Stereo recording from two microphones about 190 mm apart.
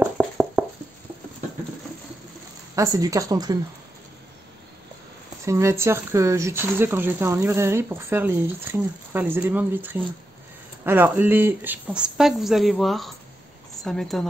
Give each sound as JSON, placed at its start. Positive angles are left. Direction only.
{"t": 0.2, "sound": "a sound", "side_deg": -5}
{"t": 2.7, "sound": "speech", "side_deg": -15}
{"t": 5.4, "sound": "a woman's voice", "side_deg": -15}